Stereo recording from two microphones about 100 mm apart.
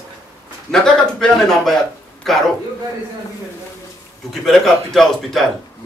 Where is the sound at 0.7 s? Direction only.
5° left (ahead or behind).